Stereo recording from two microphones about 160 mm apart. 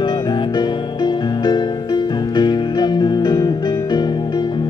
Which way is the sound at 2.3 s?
25° left (ahead or behind).